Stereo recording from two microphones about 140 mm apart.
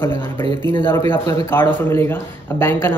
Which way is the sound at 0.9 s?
20° left (ahead or behind).